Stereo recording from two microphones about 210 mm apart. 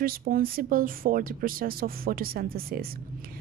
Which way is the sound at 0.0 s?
45° right (ahead or behind).